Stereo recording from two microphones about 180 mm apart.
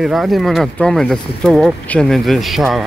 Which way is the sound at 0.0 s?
Centre (ahead or behind).